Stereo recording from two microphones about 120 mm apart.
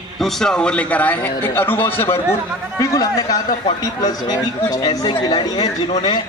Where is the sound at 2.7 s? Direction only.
30° left (ahead or behind).